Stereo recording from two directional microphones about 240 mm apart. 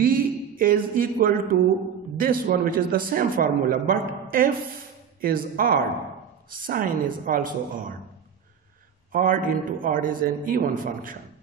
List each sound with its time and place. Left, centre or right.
0.0 s a man's voice: right
9.1 s a man's voice: right